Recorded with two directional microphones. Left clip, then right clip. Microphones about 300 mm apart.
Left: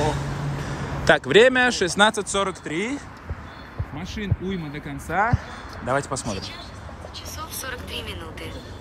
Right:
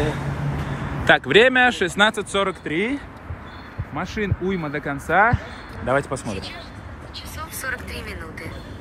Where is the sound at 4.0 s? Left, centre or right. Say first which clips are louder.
Right 7 dB; centre.